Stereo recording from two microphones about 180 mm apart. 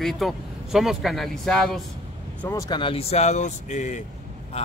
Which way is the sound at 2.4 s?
20° left (ahead or behind).